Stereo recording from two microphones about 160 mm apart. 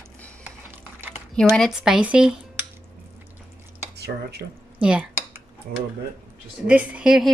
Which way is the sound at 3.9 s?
90° right.